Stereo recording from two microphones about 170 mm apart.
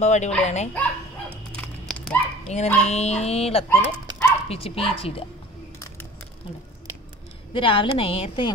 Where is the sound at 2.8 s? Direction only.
40° left (ahead or behind).